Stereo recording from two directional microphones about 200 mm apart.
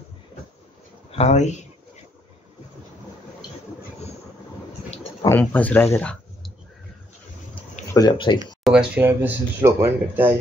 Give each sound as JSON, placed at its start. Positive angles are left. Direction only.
{"t": 1.1, "sound": "speech", "side_deg": 35}
{"t": 5.2, "sound": "speech", "side_deg": 10}
{"t": 7.9, "sound": "speech", "side_deg": 20}
{"t": 8.6, "sound": "speech", "side_deg": -5}